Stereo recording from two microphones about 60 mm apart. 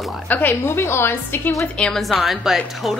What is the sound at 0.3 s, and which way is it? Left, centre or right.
A woman's voice, left.